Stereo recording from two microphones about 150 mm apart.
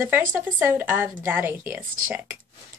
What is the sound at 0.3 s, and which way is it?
A woman's voice, 10° right (ahead or behind).